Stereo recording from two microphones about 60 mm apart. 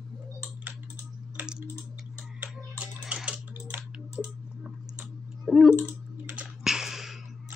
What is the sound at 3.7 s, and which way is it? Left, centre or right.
Typing, right.